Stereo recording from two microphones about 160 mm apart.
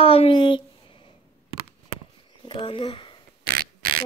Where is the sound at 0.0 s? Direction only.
35° left (ahead or behind).